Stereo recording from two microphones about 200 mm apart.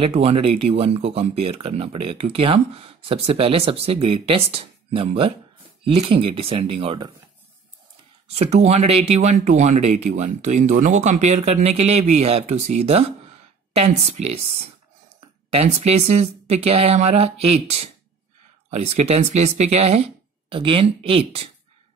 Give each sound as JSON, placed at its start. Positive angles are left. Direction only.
{"t": 0.0, "sound": "speech", "side_deg": -30}
{"t": 8.4, "sound": "speech", "side_deg": -35}